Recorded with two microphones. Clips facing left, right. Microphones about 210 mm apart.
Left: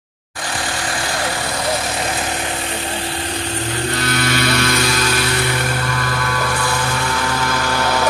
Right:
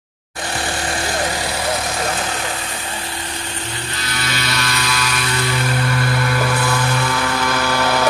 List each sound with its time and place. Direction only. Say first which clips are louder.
4.2 s vehicle: left 5 dB; 50° left (ahead or behind)